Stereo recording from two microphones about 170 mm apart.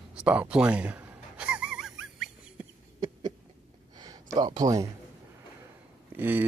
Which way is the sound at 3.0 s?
25° right (ahead or behind).